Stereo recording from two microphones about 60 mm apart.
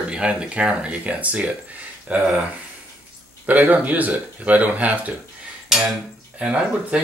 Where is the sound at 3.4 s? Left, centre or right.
Right.